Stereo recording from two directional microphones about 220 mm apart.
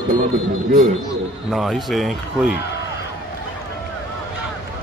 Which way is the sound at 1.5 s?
Centre (ahead or behind).